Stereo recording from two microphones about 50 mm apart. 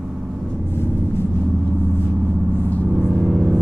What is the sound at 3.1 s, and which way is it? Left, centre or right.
Vehicle, centre.